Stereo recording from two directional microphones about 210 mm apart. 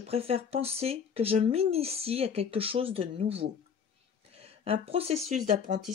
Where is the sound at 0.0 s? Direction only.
30° right (ahead or behind).